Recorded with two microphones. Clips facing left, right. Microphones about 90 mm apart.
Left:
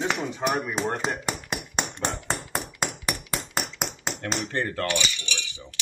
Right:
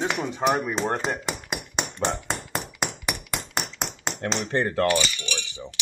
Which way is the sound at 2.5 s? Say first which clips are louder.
Right 1 dB; centre (ahead or behind).